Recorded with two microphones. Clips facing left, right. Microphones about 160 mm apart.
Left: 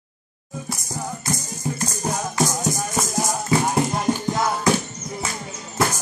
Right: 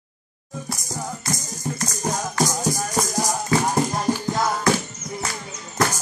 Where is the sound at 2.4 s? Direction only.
Centre (ahead or behind).